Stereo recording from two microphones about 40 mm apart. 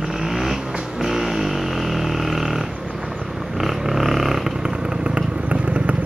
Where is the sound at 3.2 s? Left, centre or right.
Centre.